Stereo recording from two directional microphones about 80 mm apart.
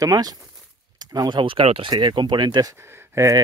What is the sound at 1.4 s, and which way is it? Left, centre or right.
Speech, right.